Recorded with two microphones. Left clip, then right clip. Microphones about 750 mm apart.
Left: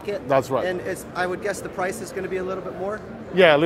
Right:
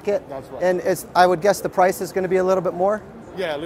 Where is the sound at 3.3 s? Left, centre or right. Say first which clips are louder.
Left 11 dB; left.